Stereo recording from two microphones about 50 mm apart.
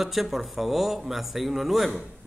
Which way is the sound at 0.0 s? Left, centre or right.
Centre.